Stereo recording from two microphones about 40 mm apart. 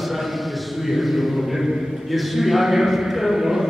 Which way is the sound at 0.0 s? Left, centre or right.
Centre.